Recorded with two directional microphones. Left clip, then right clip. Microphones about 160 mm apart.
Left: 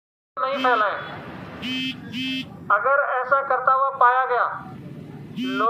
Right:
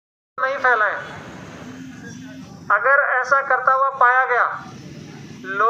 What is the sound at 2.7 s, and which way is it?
Speech, 20° right (ahead or behind).